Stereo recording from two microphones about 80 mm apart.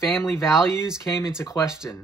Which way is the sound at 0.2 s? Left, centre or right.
Left.